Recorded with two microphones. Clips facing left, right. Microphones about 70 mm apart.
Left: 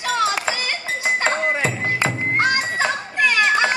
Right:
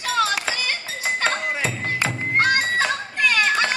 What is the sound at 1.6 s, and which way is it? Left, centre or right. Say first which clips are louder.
Music: left 3 dB; centre.